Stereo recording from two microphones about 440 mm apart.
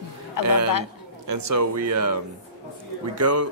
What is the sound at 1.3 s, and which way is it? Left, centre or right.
Speech, right.